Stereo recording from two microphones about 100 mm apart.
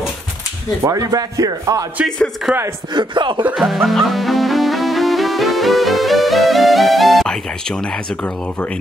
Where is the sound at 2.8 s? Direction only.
50° right (ahead or behind).